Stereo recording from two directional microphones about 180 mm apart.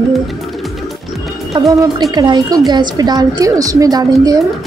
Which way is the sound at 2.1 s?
25° right (ahead or behind).